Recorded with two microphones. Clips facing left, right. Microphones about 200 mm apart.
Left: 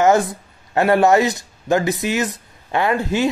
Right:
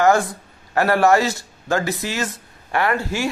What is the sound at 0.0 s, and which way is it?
Speech, 20° left (ahead or behind).